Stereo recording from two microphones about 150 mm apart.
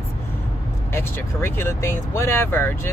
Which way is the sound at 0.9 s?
15° left (ahead or behind).